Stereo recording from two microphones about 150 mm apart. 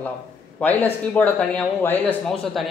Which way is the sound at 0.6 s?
10° left (ahead or behind).